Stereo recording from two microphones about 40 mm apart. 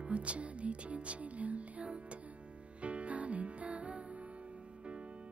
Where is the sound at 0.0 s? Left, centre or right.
Right.